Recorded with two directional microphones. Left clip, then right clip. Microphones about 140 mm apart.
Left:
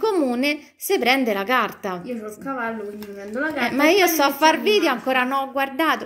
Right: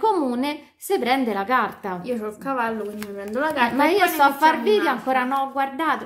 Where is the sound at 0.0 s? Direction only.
15° left (ahead or behind).